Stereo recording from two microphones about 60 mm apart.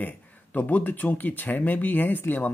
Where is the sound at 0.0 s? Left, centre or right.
Left.